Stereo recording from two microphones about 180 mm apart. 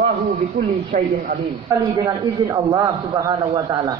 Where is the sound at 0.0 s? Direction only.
45° right (ahead or behind).